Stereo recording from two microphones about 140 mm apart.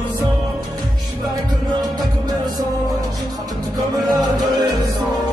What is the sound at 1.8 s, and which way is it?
Music, 30° right (ahead or behind).